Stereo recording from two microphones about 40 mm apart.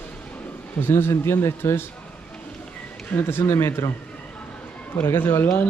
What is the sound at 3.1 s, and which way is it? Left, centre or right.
Speech, left.